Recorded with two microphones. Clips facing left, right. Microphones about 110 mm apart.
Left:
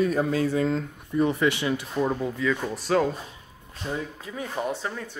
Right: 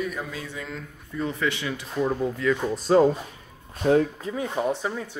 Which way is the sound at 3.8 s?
60° right (ahead or behind).